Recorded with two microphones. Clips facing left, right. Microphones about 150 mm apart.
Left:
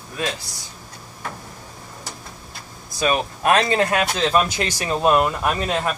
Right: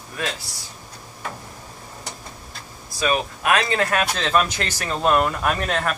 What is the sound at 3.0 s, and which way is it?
Speech, 30° left (ahead or behind).